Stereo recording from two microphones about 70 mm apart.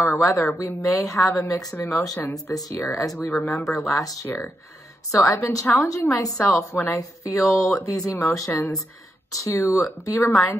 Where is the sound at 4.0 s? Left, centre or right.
Left.